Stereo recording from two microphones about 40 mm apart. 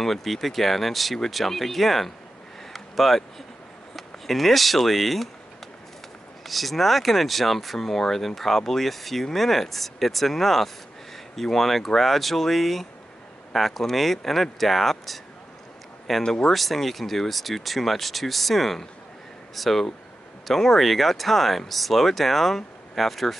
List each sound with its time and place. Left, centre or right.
0.0 s speech: centre
2.7 s a sound: centre
3.9 s speech: centre
6.4 s speech: centre
16.2 s speech: centre
16.5 s speech: centre